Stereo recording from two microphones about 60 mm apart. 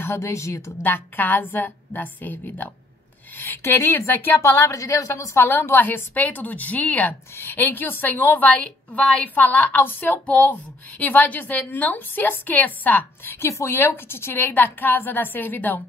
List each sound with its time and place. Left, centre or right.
0.0 s speech: left
0.8 s a woman's voice: left
3.3 s a woman's voice: left
4.6 s a woman's voice: left
5.3 s a woman's voice: left
7.3 s a woman's voice: left
8.5 s a woman's voice: centre; by 10.2 s left
10.2 s a woman's voice: centre
13.3 s a woman's voice: left